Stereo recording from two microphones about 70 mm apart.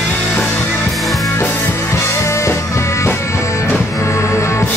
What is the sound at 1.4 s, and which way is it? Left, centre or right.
Music, left.